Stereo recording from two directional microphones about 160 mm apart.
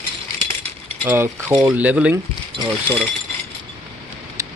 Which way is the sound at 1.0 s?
15° right (ahead or behind).